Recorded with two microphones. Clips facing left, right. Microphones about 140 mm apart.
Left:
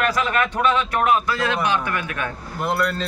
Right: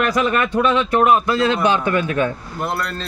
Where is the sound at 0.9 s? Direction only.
25° right (ahead or behind).